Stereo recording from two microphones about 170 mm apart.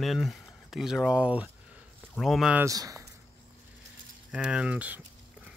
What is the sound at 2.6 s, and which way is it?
Speech, 20° right (ahead or behind).